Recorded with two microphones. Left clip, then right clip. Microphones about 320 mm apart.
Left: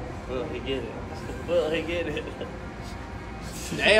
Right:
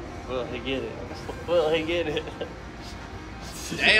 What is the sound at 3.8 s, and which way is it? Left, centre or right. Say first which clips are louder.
Speech: even; centre.